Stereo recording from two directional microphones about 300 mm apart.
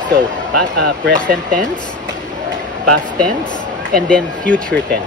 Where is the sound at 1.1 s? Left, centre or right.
Centre.